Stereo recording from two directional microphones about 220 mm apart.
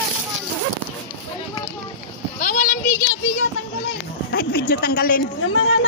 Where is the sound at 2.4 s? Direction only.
35° left (ahead or behind).